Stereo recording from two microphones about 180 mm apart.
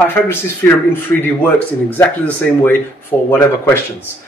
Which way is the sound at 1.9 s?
10° left (ahead or behind).